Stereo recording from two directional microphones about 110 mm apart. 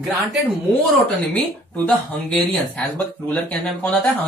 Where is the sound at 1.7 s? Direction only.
10° left (ahead or behind).